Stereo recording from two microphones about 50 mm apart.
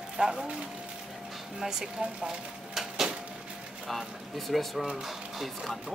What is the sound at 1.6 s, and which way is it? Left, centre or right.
Speech, centre.